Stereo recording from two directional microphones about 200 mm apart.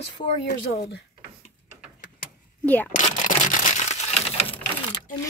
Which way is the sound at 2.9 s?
40° left (ahead or behind).